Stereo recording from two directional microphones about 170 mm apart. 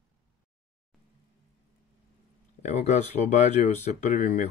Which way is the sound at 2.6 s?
45° left (ahead or behind).